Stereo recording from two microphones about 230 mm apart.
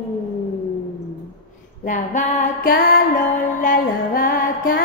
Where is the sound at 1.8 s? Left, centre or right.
Left.